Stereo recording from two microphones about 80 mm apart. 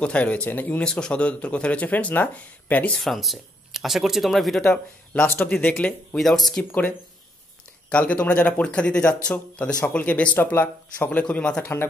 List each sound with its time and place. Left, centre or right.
0.0 s speech: centre
0.8 s speech: centre
3.0 s speech: centre
4.6 s speech: centre
6.1 s speech: centre
7.9 s speech: centre
11.6 s speech: left